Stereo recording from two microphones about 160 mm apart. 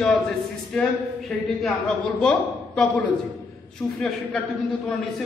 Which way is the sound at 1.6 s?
5° left (ahead or behind).